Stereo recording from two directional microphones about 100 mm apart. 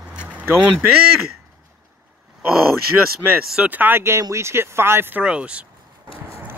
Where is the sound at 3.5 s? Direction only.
10° right (ahead or behind).